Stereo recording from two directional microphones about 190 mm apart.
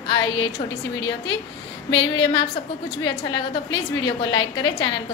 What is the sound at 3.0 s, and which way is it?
A woman's voice, 25° left (ahead or behind).